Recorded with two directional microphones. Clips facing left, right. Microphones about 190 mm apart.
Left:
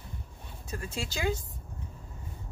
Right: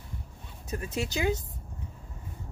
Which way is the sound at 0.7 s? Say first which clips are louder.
Right 4 dB; 20° right (ahead or behind).